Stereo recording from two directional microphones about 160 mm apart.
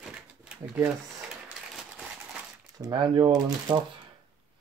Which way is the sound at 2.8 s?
30° right (ahead or behind).